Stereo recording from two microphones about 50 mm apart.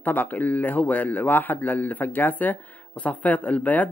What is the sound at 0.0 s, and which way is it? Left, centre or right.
A man's voice, left.